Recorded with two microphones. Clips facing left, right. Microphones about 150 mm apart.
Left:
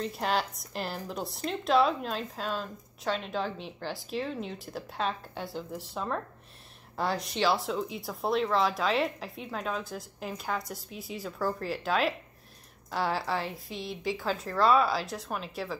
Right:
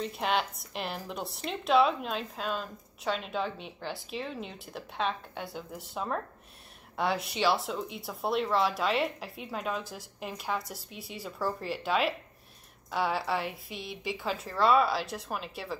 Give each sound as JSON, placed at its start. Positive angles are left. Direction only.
{"t": 0.0, "sound": "speech", "side_deg": 0}
{"t": 13.7, "sound": "a woman's voice", "side_deg": -55}
{"t": 14.0, "sound": "speech", "side_deg": 0}